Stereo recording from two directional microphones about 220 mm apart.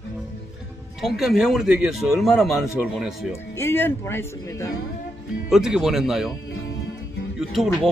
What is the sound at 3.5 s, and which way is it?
Speech, 10° left (ahead or behind).